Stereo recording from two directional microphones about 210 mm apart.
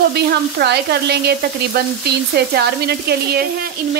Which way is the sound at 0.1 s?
50° right (ahead or behind).